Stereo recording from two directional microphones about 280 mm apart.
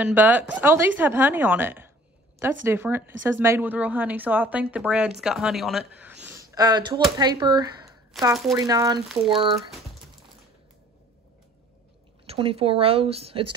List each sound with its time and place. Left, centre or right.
0.0 s a woman's voice: centre
12.3 s speech: centre